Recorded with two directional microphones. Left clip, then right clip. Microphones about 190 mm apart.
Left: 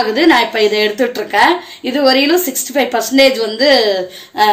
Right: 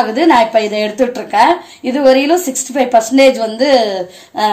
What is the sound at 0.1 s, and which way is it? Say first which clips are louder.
Speech: right 1 dB; 50° right (ahead or behind).